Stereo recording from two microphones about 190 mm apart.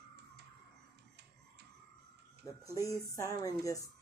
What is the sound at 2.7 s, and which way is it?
Speech, 15° left (ahead or behind).